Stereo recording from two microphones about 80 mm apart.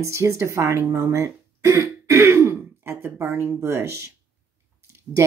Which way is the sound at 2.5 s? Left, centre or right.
Right.